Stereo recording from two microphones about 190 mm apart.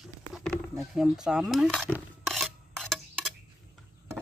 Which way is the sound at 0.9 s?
Centre (ahead or behind).